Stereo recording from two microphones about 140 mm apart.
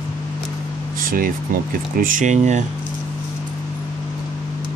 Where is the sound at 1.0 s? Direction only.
90° right.